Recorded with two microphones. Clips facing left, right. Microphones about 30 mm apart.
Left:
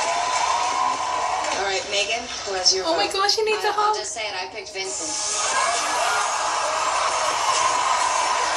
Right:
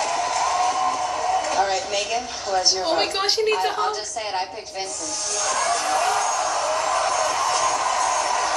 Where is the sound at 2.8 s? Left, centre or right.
Centre.